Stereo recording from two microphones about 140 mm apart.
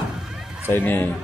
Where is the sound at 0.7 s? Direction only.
15° left (ahead or behind).